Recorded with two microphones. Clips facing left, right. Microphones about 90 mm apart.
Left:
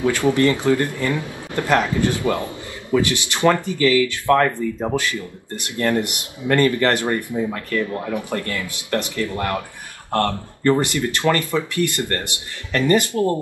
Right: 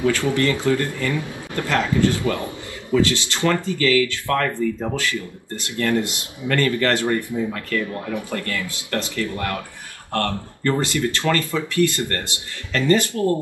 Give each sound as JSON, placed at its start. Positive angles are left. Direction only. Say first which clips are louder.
{"t": 0.0, "sound": "speech", "louder": "left 2 dB", "side_deg": 20}
{"t": 8.1, "sound": "speech", "louder": "left 2 dB", "side_deg": 20}